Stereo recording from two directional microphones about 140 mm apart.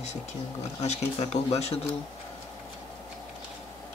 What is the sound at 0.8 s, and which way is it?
Speech, 50° left (ahead or behind).